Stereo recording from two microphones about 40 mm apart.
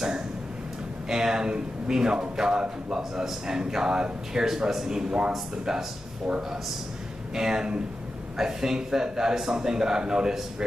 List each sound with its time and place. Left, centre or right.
1.0 s a man's voice: centre
6.2 s a man's voice: right